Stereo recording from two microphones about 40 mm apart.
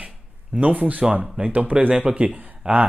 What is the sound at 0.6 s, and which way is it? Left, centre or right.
Speech, right.